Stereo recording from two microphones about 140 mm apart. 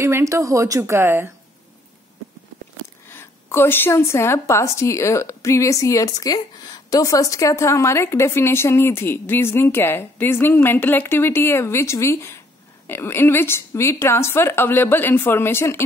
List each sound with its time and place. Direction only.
0.0 s speech: 20° right (ahead or behind)
3.1 s a woman's voice: 15° left (ahead or behind)